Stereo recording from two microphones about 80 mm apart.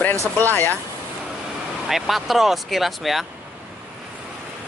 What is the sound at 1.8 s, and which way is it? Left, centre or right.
Speech, centre.